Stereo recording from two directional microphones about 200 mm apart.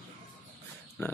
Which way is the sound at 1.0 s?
10° left (ahead or behind).